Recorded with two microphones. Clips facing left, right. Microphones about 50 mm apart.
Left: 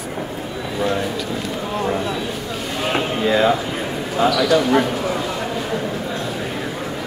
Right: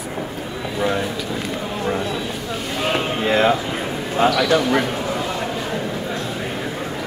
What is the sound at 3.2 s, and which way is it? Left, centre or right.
Speech, right.